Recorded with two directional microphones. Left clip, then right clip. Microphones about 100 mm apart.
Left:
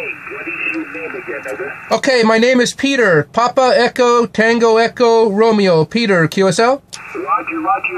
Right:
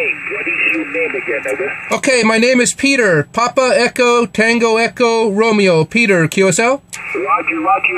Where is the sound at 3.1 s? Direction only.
15° right (ahead or behind).